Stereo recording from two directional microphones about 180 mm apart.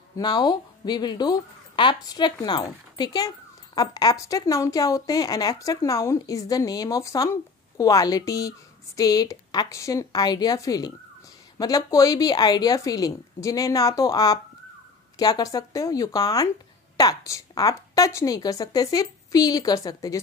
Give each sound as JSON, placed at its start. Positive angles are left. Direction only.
{"t": 0.2, "sound": "speech", "side_deg": 25}